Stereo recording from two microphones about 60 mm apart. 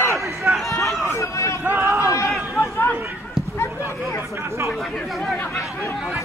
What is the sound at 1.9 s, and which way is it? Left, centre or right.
Run, right.